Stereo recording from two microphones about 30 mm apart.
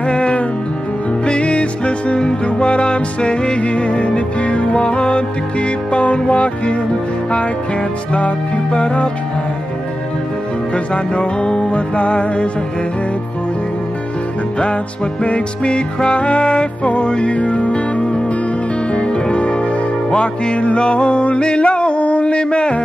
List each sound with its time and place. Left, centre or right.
0.1 s music: left
8.7 s music: left
11.1 s music: left
15.2 s music: left
21.4 s music: left